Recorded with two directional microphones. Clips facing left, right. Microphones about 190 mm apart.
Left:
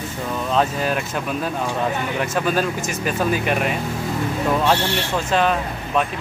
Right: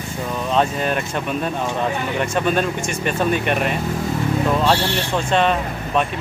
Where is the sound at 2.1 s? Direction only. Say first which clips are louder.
Right 2 dB; centre (ahead or behind).